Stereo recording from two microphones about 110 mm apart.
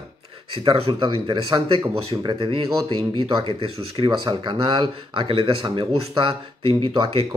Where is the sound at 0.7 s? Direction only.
50° right (ahead or behind).